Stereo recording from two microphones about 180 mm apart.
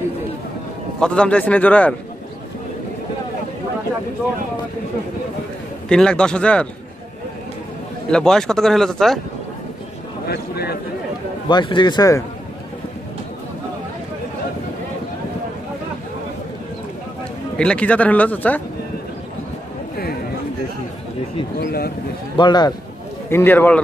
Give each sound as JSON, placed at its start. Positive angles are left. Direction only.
{"t": 0.9, "sound": "a man's voice", "side_deg": 5}
{"t": 5.9, "sound": "speech", "side_deg": 5}
{"t": 8.1, "sound": "speech", "side_deg": 5}
{"t": 10.2, "sound": "speech", "side_deg": 60}
{"t": 11.4, "sound": "a man's voice", "side_deg": 25}
{"t": 17.6, "sound": "a man's voice", "side_deg": 5}
{"t": 21.5, "sound": "speech", "side_deg": 60}
{"t": 22.4, "sound": "a man's voice", "side_deg": 25}
{"t": 23.3, "sound": "a man's voice", "side_deg": 10}